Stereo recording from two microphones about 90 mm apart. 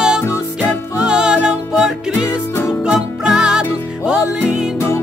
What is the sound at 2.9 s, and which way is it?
Music, 5° right (ahead or behind).